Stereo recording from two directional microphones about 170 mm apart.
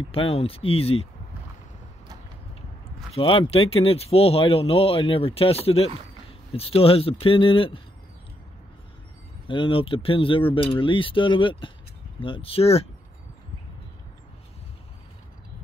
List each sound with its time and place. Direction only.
0.1 s speech: 35° left (ahead or behind)
3.1 s speech: 35° left (ahead or behind)
9.5 s speech: 30° left (ahead or behind)